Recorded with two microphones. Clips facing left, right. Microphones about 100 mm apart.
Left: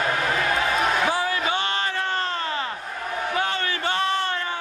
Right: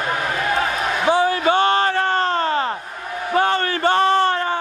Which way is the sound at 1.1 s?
25° right (ahead or behind).